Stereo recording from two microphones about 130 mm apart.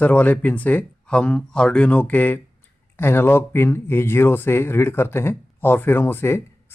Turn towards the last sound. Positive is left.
turn(degrees=20)  # may be behind; listen again after turning